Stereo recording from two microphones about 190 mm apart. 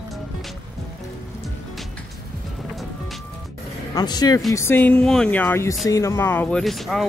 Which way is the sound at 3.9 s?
20° left (ahead or behind).